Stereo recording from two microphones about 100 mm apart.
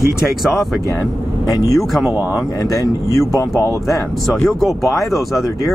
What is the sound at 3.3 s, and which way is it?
Speech, 35° left (ahead or behind).